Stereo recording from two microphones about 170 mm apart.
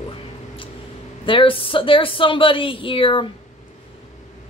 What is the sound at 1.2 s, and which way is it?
A woman's voice, 30° left (ahead or behind).